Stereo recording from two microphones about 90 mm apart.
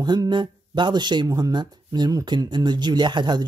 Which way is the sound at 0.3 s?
60° right (ahead or behind).